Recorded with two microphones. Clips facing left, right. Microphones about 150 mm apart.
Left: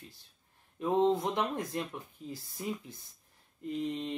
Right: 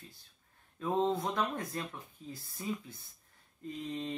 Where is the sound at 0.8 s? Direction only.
20° left (ahead or behind).